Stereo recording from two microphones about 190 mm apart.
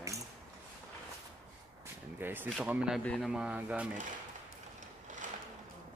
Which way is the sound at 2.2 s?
10° right (ahead or behind).